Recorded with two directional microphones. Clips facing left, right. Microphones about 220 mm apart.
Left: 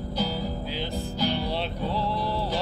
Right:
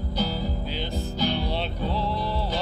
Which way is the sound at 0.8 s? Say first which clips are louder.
Right 1 dB; 30° left (ahead or behind).